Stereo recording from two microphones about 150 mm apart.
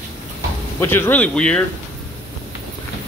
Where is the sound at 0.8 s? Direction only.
15° left (ahead or behind).